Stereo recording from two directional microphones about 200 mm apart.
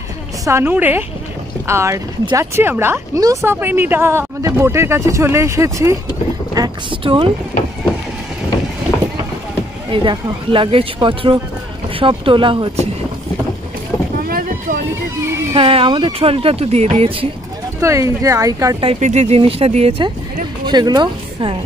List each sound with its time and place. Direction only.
0.5 s speech: 10° right (ahead or behind)
9.8 s speech: 25° right (ahead or behind)
14.1 s boat: 45° right (ahead or behind)
15.5 s speech: 25° right (ahead or behind)
17.7 s speech: 15° right (ahead or behind)
18.9 s speech: 35° right (ahead or behind)